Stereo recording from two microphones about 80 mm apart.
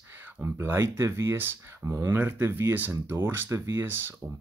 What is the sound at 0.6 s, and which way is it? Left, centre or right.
Speech, right.